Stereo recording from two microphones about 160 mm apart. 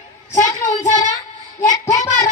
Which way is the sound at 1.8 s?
20° left (ahead or behind).